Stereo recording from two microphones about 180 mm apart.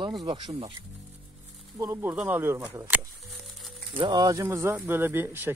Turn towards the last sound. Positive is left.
turn(degrees=-10)  # may be behind; listen again after turning